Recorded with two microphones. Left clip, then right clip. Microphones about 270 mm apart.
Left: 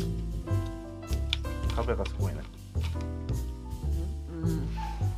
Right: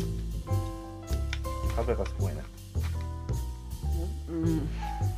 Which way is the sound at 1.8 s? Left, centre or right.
Centre.